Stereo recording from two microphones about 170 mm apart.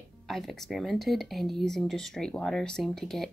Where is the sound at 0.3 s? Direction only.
Centre (ahead or behind).